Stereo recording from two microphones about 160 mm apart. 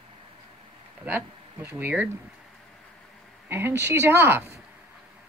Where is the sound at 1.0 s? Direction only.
15° right (ahead or behind).